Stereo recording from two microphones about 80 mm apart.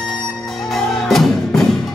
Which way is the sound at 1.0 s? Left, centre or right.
Centre.